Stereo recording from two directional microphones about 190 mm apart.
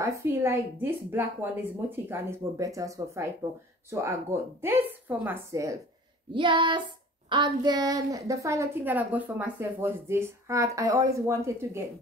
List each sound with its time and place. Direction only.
0.0 s a woman's voice: 15° right (ahead or behind)
6.3 s child singing: 25° right (ahead or behind)
7.2 s a woman's voice: 25° right (ahead or behind)